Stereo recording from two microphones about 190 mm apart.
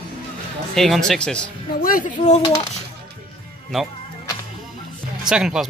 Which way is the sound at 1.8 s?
45° left (ahead or behind).